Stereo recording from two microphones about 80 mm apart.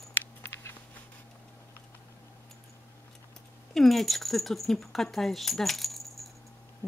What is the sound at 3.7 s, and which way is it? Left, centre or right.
Speech, centre.